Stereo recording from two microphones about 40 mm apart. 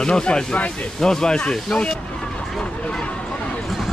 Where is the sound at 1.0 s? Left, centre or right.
Centre.